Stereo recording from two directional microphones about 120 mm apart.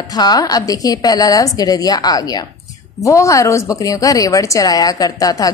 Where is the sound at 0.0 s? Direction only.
35° left (ahead or behind).